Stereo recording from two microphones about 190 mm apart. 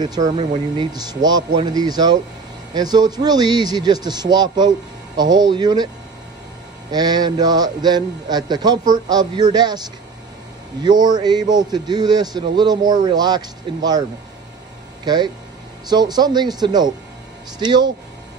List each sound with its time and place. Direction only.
0.0 s a man's voice: 20° right (ahead or behind)
6.9 s a man's voice: 20° right (ahead or behind)
10.8 s a man's voice: 20° right (ahead or behind)
15.0 s a man's voice: 25° right (ahead or behind)